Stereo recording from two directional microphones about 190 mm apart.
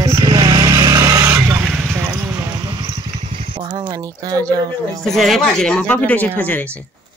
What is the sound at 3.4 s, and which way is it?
Speech, 30° right (ahead or behind).